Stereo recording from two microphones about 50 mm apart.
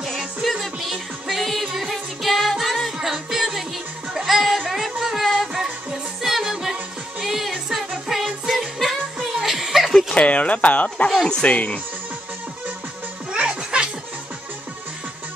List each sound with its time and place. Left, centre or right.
0.4 s music: centre
9.4 s chuckle: centre
10.1 s speech: left
11.2 s speech: centre
11.5 s speech: left
13.3 s music: centre